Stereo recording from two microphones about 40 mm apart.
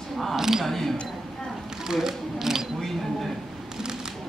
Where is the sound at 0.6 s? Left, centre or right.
Centre.